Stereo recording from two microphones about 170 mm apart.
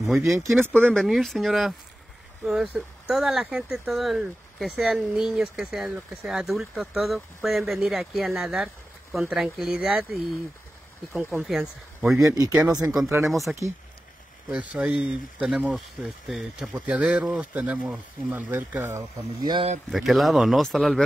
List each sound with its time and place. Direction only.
0.2 s speech: 15° right (ahead or behind)
0.9 s speech: centre (ahead or behind)
11.4 s speech: centre (ahead or behind)
12.2 s speech: 20° right (ahead or behind)
13.3 s speech: centre (ahead or behind)
18.9 s speech: 25° right (ahead or behind)
19.9 s speech: centre (ahead or behind)